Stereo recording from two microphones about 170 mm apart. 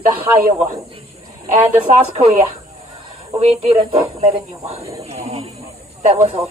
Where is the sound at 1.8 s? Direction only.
45° right (ahead or behind).